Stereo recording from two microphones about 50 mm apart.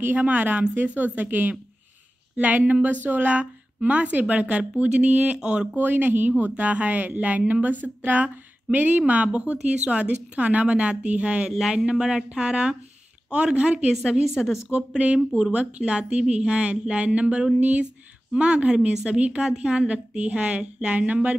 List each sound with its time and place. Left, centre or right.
0.0 s a woman's voice: right; by 5.7 s centre
5.8 s a woman's voice: right
14.2 s speech: centre
14.7 s a woman's voice: centre